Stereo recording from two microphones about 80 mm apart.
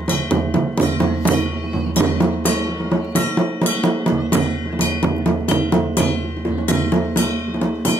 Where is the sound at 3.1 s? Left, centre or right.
Centre.